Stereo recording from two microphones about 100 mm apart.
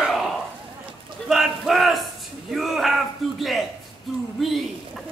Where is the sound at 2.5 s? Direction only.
Centre (ahead or behind).